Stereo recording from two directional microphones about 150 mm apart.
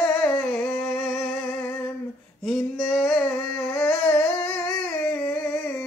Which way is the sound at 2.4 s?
Centre (ahead or behind).